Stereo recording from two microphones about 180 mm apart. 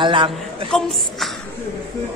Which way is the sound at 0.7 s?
5° left (ahead or behind).